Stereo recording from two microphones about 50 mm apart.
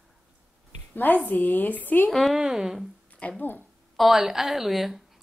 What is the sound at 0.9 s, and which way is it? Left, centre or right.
A woman's voice, left.